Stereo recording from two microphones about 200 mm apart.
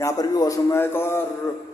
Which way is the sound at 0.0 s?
15° left (ahead or behind).